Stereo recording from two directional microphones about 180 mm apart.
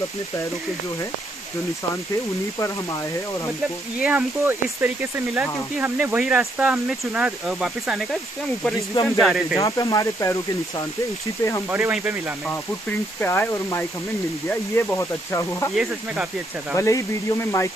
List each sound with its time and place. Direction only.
4.0 s speech: 10° right (ahead or behind)
8.7 s speech: 15° left (ahead or behind)
9.2 s speech: centre (ahead or behind)
9.6 s speech: 20° left (ahead or behind)
11.7 s speech: 10° right (ahead or behind)
13.2 s speech: 15° left (ahead or behind)
15.7 s speech: 5° right (ahead or behind)
16.7 s speech: 15° left (ahead or behind)